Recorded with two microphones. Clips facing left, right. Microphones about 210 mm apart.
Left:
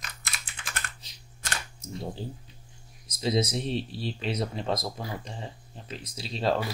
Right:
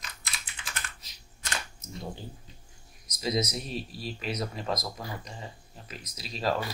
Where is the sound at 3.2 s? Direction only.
30° left (ahead or behind).